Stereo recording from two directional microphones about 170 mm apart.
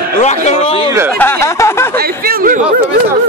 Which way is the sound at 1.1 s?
15° left (ahead or behind).